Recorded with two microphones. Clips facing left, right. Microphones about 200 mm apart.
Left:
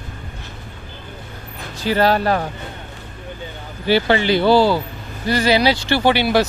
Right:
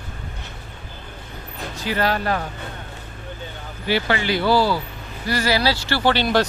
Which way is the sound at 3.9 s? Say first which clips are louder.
Left 5 dB; 30° left (ahead or behind).